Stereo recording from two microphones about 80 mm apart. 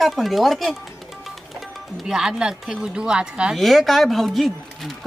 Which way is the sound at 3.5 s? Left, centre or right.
Centre.